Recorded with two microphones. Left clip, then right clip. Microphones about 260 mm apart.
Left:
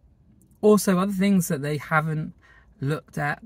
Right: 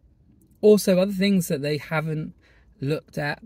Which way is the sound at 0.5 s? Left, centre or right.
Left.